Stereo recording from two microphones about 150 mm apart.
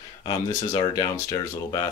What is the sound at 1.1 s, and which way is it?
Speech, 20° left (ahead or behind).